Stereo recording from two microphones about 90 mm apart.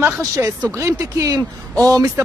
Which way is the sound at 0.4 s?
30° right (ahead or behind).